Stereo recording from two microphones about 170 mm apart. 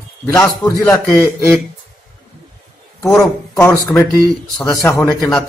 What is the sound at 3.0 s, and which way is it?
Speech, 15° left (ahead or behind).